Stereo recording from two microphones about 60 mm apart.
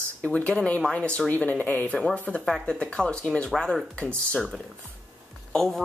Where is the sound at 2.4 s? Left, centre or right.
Centre.